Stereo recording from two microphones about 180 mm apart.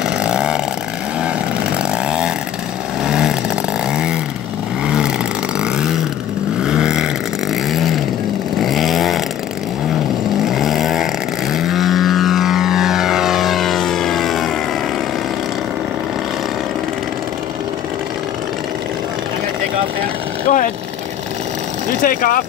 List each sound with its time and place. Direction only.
0.0 s vehicle: 5° right (ahead or behind)
1.7 s chainsaw: 5° right (ahead or behind)
3.0 s vehicle: 5° right (ahead or behind)
8.6 s chainsaw: centre (ahead or behind)
10.5 s vehicle: centre (ahead or behind)
20.4 s vehicle: 45° left (ahead or behind)
22.0 s a sound: 50° left (ahead or behind)